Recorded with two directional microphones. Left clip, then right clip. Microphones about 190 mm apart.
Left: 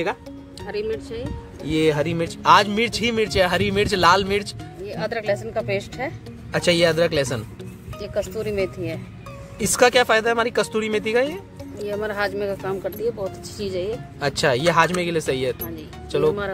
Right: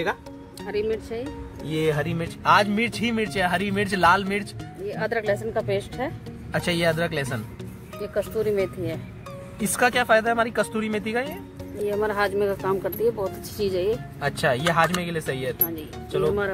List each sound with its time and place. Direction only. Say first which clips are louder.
0.7 s speech: even; 25° right (ahead or behind)
1.7 s speech: left 5 dB; 60° left (ahead or behind)
4.8 s speech: left 1 dB; 20° right (ahead or behind)
6.5 s speech: left 5 dB; 60° left (ahead or behind)
8.5 s speech: even; 20° right (ahead or behind)
9.6 s speech: left 5 dB; 65° left (ahead or behind)
12.0 s speech: right 1 dB; 30° right (ahead or behind)
14.2 s speech: left 4 dB; 65° left (ahead or behind)